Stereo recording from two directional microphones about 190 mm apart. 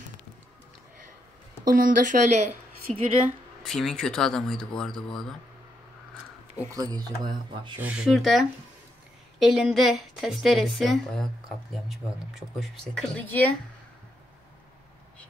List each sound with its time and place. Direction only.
1.7 s speech: 45° right (ahead or behind)
2.9 s a woman's voice: 5° left (ahead or behind)
6.7 s speech: 20° right (ahead or behind)
7.8 s a woman's voice: 5° right (ahead or behind)